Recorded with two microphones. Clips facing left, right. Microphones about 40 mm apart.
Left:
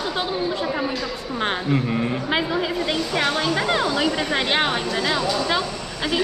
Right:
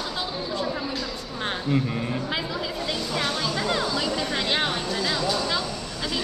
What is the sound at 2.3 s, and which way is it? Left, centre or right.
Speech, left.